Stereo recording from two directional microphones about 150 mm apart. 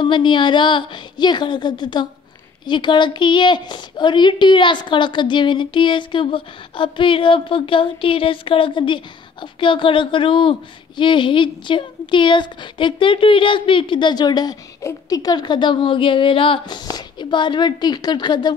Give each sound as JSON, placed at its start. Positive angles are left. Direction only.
{"t": 0.0, "sound": "a woman's voice", "side_deg": 30}